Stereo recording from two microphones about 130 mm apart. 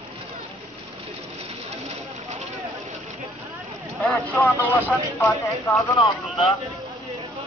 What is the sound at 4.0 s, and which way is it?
Speech, 10° left (ahead or behind).